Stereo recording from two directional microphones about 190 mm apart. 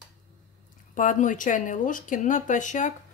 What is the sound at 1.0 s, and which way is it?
Speech, 40° left (ahead or behind).